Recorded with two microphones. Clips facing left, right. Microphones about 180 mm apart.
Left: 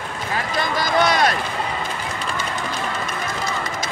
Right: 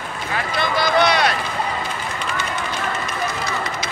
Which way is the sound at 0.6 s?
45° left (ahead or behind).